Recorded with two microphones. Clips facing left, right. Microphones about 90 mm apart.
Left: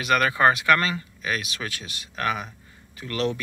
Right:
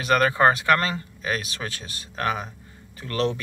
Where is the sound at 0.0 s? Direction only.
30° right (ahead or behind).